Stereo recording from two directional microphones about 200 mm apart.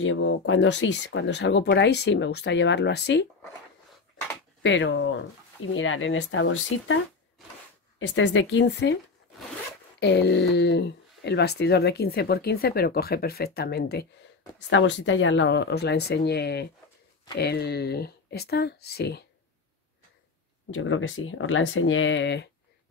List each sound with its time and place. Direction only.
0.0 s speech: 75° left (ahead or behind); by 3.3 s 60° left (ahead or behind)
4.6 s speech: 65° left (ahead or behind)
8.0 s speech: 65° left (ahead or behind)
9.9 s speech: 60° left (ahead or behind)
14.7 s speech: 70° left (ahead or behind)
20.7 s speech: 80° left; by 22.5 s 60° left (ahead or behind)